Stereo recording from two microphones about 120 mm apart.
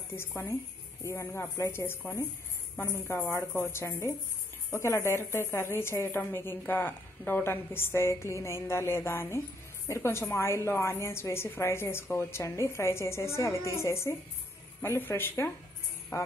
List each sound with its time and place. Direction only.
1.0 s speech: 25° left (ahead or behind)
16.1 s music: 25° left (ahead or behind)